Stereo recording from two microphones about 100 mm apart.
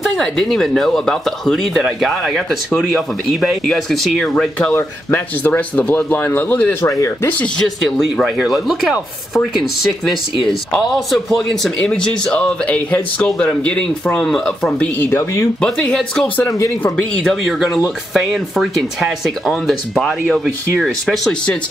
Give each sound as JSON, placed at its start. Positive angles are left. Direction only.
{"t": 0.0, "sound": "speech", "side_deg": 5}
{"t": 4.7, "sound": "speech", "side_deg": 20}
{"t": 7.8, "sound": "speech", "side_deg": 0}
{"t": 15.0, "sound": "speech", "side_deg": 25}
{"t": 15.6, "sound": "speech", "side_deg": 5}
{"t": 16.4, "sound": "speech", "side_deg": 30}
{"t": 17.2, "sound": "speech", "side_deg": 0}